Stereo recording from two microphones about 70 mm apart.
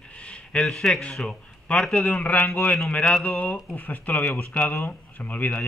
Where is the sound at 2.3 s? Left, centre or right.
Left.